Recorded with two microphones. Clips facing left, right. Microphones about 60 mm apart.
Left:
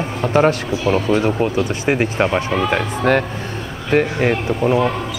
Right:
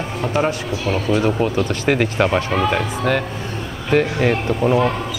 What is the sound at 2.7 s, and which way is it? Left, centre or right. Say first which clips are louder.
Speech: left 3 dB; left.